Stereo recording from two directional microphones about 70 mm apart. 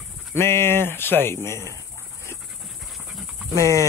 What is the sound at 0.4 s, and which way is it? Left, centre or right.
A man's voice, left.